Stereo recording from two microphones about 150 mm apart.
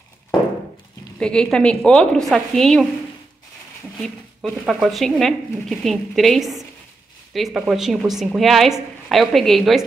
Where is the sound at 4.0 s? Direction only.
Centre (ahead or behind).